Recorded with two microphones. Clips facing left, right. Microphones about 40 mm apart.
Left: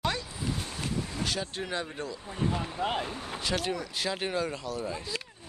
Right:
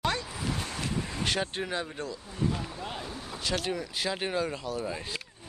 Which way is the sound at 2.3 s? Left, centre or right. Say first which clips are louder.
Left 1 dB; left.